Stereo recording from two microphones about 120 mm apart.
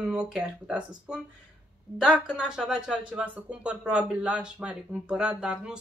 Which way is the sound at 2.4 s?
5° right (ahead or behind).